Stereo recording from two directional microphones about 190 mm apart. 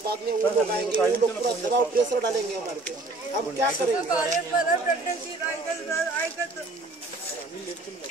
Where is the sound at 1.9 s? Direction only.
50° right (ahead or behind).